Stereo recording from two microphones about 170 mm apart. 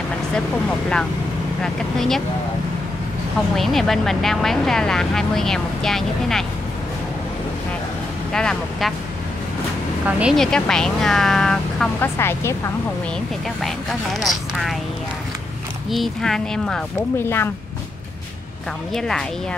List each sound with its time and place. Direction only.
1.6 s speech: centre (ahead or behind)
3.5 s speech: centre (ahead or behind)
8.3 s speech: 5° left (ahead or behind)
10.0 s a woman's voice: 10° right (ahead or behind)
10.3 s speech: 5° left (ahead or behind)
12.2 s a woman's voice: 15° left (ahead or behind)
14.2 s speech: centre (ahead or behind)
15.9 s speech: centre (ahead or behind)
18.9 s speech: 5° left (ahead or behind)